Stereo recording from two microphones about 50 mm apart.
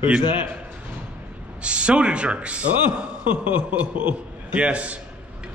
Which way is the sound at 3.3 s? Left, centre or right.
Right.